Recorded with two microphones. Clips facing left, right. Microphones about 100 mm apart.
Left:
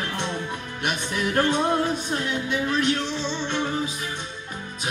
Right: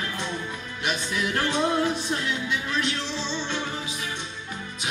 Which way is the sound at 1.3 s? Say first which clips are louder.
Left 3 dB; 45° left (ahead or behind).